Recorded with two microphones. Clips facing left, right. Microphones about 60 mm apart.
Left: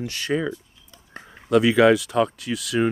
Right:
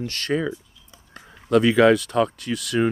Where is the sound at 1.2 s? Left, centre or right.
Left.